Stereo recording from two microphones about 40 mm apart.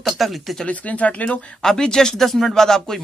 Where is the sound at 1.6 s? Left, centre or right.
Centre.